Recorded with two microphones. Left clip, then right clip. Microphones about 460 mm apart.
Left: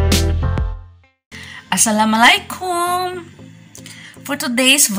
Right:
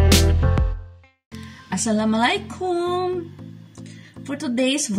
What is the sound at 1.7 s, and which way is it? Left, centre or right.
Speech, right.